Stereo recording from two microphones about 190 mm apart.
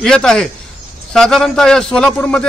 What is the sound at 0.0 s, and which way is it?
A man's voice, 5° left (ahead or behind).